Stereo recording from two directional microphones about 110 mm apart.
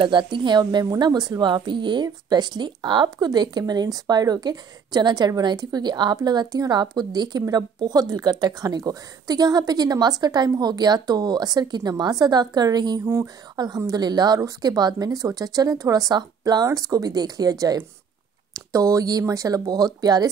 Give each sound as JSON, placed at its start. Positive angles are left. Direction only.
{"t": 0.0, "sound": "speech", "side_deg": -45}
{"t": 13.0, "sound": "speech", "side_deg": -25}
{"t": 13.6, "sound": "speech", "side_deg": -35}